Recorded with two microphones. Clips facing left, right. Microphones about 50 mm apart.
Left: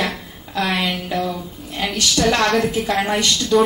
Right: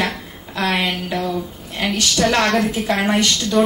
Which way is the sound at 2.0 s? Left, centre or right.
Right.